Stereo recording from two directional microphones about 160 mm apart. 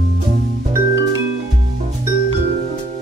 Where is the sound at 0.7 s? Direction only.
20° right (ahead or behind).